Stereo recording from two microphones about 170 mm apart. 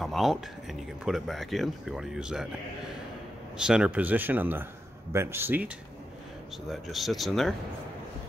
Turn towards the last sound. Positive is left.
turn(degrees=0)  # may be behind; listen again after turning